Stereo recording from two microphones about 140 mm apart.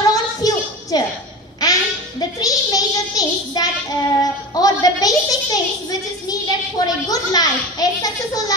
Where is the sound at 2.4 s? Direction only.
25° left (ahead or behind).